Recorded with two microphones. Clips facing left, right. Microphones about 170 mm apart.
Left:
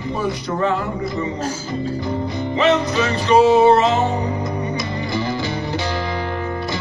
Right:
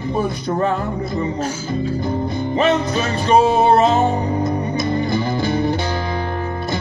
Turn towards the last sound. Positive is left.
turn(degrees=-50)  # may be behind; listen again after turning